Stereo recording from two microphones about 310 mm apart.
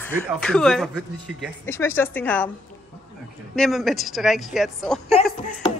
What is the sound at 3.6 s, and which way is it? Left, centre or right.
Speech, centre.